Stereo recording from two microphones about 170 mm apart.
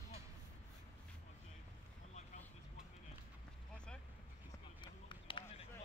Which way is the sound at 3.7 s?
5° left (ahead or behind).